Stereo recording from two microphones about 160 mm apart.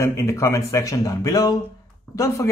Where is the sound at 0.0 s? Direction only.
20° left (ahead or behind).